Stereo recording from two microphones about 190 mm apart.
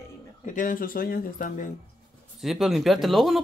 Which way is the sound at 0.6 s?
45° left (ahead or behind).